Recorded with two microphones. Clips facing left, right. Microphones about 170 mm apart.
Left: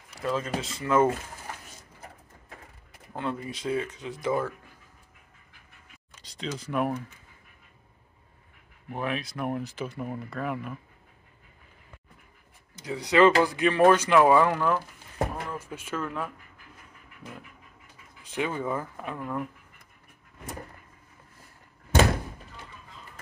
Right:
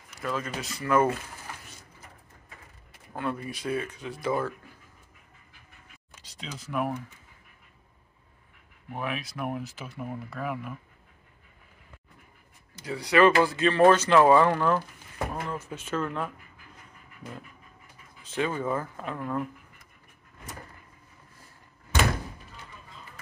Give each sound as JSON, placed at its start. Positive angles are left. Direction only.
{"t": 0.1, "sound": "speech", "side_deg": 30}
{"t": 3.2, "sound": "speech", "side_deg": 20}
{"t": 6.2, "sound": "speech", "side_deg": -5}
{"t": 8.9, "sound": "speech", "side_deg": -5}
{"t": 12.7, "sound": "speech", "side_deg": 20}
{"t": 18.2, "sound": "speech", "side_deg": 15}